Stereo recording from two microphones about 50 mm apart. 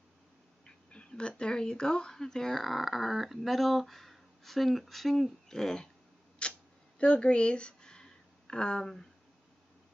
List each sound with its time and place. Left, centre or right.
0.7 s a sound: centre
1.4 s speech: centre
6.4 s camera: left
7.0 s speech: centre